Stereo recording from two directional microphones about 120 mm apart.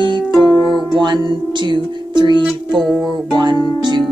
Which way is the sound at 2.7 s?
Centre (ahead or behind).